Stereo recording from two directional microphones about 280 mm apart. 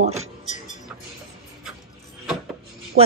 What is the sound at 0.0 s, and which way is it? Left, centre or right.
Speech, right.